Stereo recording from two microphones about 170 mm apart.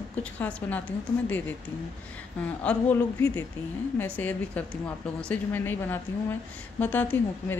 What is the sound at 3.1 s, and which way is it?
A woman's voice, 20° left (ahead or behind).